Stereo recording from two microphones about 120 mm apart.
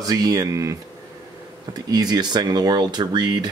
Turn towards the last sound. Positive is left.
turn(degrees=-35)  # may be behind; listen again after turning